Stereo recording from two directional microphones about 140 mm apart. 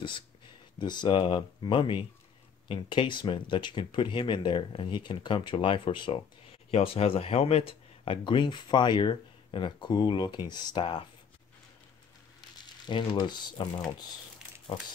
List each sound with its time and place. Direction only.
0.7 s speech: 30° left (ahead or behind)
12.8 s speech: 35° left (ahead or behind)